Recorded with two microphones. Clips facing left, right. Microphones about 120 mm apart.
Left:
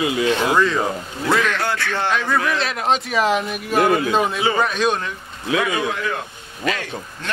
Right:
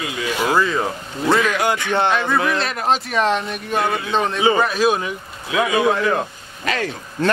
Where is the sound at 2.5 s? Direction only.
Centre (ahead or behind).